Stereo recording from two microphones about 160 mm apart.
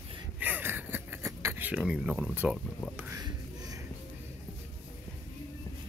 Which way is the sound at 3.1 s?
25° right (ahead or behind).